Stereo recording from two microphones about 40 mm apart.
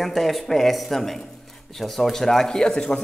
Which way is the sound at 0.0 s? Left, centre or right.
Centre.